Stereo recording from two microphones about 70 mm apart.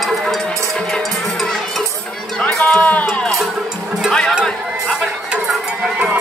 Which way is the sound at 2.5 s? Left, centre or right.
Centre.